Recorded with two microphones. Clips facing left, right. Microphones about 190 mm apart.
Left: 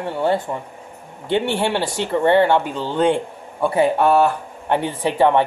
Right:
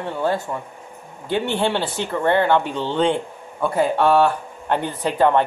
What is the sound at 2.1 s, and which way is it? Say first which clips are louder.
Speech: left 3 dB; 15° left (ahead or behind).